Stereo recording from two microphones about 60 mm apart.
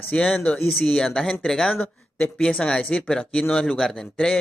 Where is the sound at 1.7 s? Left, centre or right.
Left.